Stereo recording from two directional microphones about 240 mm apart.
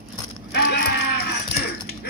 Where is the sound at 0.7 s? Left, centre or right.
Left.